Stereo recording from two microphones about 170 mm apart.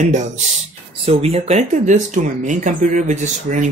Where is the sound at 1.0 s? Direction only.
35° right (ahead or behind).